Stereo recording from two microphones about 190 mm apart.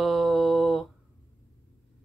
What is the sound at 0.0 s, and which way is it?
Mantra, centre (ahead or behind).